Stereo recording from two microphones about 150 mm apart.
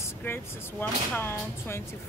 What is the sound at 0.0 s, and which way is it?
Speech, 15° left (ahead or behind).